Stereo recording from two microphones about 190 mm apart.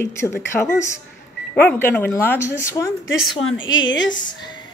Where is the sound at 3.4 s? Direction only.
85° left.